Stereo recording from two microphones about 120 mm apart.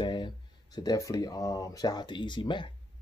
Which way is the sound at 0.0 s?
40° left (ahead or behind).